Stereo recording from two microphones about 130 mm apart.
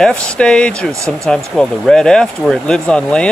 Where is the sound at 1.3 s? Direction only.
5° left (ahead or behind).